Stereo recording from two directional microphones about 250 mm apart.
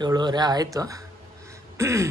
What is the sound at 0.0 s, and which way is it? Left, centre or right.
A man's voice, centre.